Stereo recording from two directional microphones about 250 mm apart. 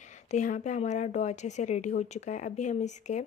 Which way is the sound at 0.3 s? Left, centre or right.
Left.